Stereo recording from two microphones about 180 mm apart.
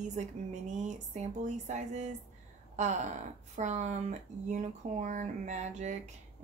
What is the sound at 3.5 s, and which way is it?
Speech, 40° right (ahead or behind).